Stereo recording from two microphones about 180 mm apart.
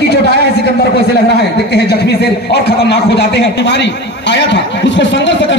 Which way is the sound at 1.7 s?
65° left (ahead or behind).